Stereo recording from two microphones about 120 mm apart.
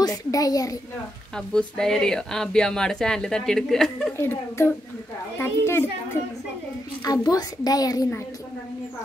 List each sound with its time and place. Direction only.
0.0 s a child's voice: 30° left (ahead or behind)
1.3 s speech: 5° left (ahead or behind)
4.2 s a child's voice: 20° left (ahead or behind)
7.1 s a child's voice: 35° left (ahead or behind)